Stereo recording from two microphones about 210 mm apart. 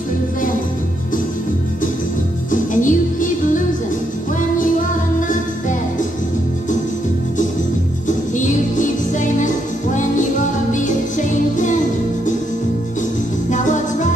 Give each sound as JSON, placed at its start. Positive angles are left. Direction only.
{"t": 2.5, "sound": "music", "side_deg": 40}
{"t": 5.3, "sound": "music", "side_deg": 40}
{"t": 8.4, "sound": "music", "side_deg": 35}
{"t": 10.7, "sound": "music", "side_deg": 35}